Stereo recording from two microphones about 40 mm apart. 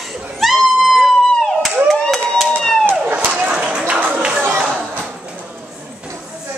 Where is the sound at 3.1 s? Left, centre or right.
Right.